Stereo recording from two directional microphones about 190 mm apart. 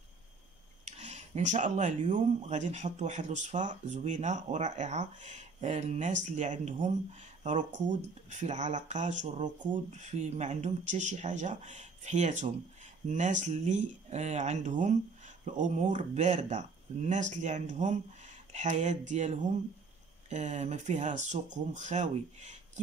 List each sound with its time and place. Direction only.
0.8 s speech: 35° right (ahead or behind)